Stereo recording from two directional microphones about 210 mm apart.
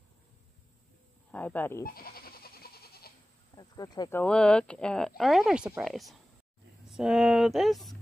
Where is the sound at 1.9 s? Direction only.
45° left (ahead or behind).